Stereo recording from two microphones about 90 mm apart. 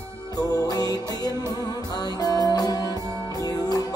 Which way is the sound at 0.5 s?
45° left (ahead or behind).